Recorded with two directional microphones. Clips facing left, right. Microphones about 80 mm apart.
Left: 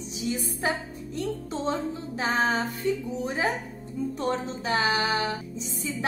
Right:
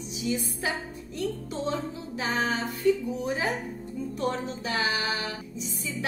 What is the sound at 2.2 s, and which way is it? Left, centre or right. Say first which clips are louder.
Music: left 3 dB; left.